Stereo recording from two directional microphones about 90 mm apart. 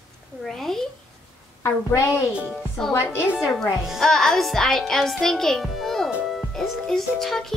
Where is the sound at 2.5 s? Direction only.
Centre (ahead or behind).